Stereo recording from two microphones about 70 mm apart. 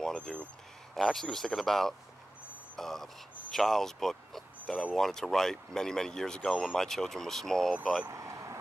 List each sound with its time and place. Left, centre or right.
0.0 s a sound: centre
0.9 s speech: centre
8.1 s vehicle: right